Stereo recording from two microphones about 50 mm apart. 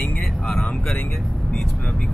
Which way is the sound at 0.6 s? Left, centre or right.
Left.